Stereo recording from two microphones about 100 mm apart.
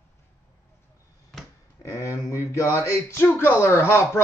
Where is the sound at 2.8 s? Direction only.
25° left (ahead or behind).